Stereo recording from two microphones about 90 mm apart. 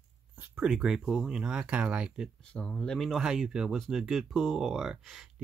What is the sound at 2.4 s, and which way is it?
Speech, 15° left (ahead or behind).